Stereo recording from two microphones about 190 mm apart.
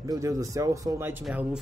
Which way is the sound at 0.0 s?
15° right (ahead or behind).